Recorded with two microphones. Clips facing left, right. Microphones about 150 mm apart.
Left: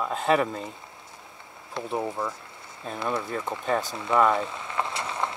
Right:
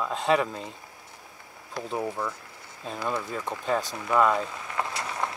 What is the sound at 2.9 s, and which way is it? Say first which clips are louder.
Speech: left 2 dB; 25° left (ahead or behind).